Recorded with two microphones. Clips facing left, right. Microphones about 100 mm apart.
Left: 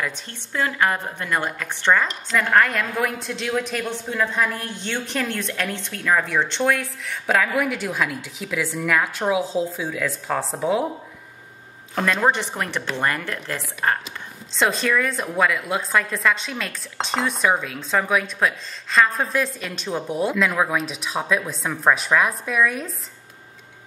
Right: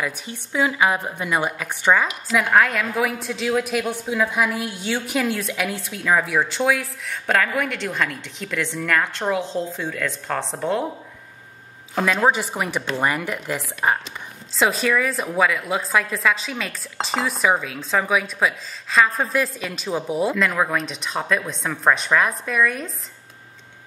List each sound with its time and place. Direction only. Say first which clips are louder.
0.0 s a woman's voice: right 1 dB; 10° right (ahead or behind)
11.9 s a woman's voice: right 1 dB; 5° right (ahead or behind)